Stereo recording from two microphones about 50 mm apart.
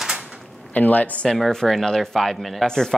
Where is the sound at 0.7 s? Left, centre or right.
Left.